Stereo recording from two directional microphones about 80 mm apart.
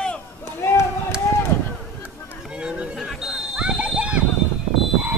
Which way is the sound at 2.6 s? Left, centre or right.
Centre.